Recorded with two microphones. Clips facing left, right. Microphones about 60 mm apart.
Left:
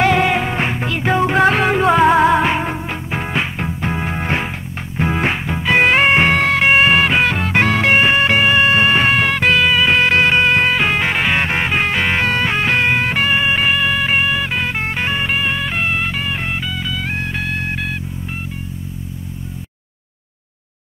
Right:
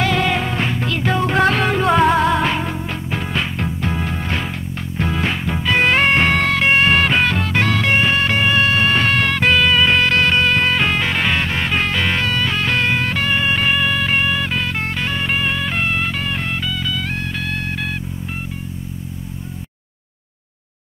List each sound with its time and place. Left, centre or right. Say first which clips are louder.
0.0 s music: left 4 dB; left
1.9 s music: left 3 dB; centre
2.3 s music: left 3 dB; left
4.5 s music: right 1 dB; centre
7.8 s music: left 3 dB; left
15.2 s music: left 1 dB; centre; by 17.7 s left
17.7 s music: left 1 dB; centre